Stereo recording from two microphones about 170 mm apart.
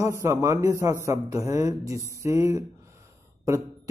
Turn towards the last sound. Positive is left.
turn(degrees=-15)  # may be behind; listen again after turning